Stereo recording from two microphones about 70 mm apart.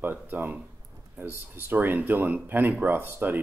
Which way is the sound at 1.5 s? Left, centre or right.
Right.